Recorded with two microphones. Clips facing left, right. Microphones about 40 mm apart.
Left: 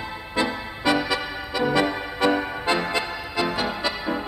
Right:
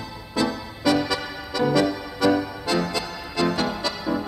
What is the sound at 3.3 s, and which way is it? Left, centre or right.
Music, centre.